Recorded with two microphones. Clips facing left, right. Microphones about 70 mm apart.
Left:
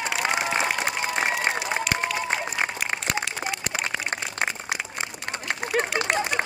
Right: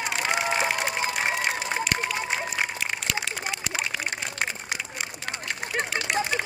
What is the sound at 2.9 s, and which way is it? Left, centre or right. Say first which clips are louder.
Applause: left 2 dB; left.